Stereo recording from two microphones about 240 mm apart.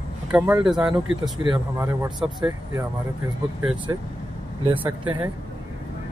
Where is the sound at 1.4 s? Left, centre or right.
Centre.